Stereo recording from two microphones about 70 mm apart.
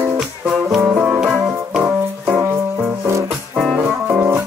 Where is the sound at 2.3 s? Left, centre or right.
Right.